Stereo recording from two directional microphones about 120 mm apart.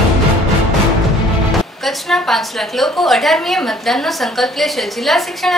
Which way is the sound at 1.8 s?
Centre (ahead or behind).